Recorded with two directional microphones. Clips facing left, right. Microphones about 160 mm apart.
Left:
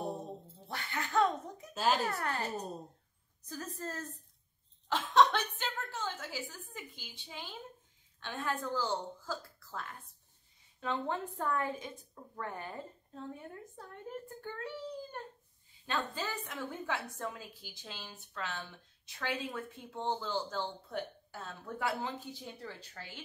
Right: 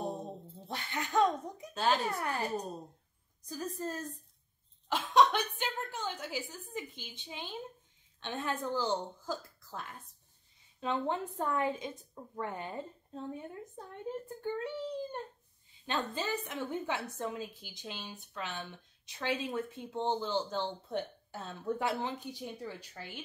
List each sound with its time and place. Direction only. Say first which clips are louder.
0.7 s laughter: right 1 dB; 20° right (ahead or behind)
1.7 s speech: right 1 dB; 5° left (ahead or behind)
2.0 s a woman's voice: right 1 dB; 15° right (ahead or behind)
3.4 s a woman's voice: right 4 dB; 15° right (ahead or behind)